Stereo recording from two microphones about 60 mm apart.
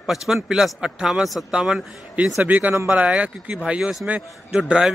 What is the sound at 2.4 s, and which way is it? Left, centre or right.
A man's voice, right.